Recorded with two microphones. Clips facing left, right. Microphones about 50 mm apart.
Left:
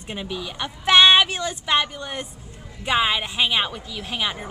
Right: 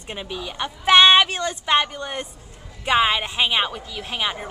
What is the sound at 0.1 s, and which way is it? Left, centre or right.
A woman's voice, centre.